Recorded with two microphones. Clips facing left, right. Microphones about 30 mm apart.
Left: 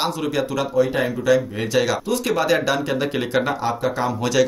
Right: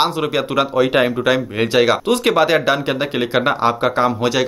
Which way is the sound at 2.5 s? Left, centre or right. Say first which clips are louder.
Right 3 dB; right.